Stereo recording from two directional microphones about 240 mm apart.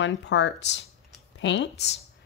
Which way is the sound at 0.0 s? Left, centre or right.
Left.